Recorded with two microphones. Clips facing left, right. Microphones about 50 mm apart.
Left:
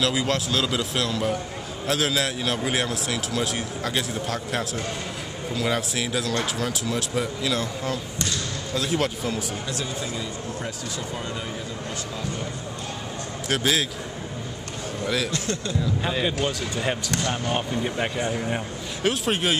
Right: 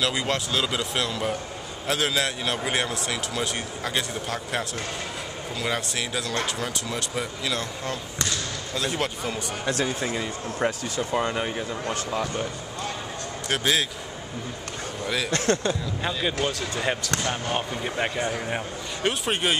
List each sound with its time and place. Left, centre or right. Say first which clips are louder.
0.0 s a man's voice: left 2 dB; centre
9.7 s speech: right 4 dB; right
13.5 s a man's voice: left 1 dB; centre
15.3 s speech: right 5 dB; right
17.3 s a man's voice: left 2 dB; centre